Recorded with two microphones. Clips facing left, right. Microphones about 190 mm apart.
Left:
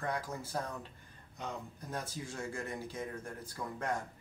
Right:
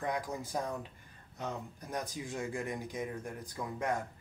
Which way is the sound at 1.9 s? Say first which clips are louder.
Right 3 dB; 15° right (ahead or behind).